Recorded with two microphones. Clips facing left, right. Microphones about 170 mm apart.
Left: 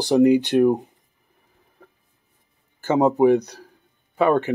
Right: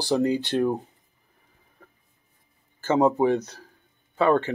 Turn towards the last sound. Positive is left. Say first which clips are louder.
# left 2 dB
turn(degrees=15)  # may be behind; listen again after turning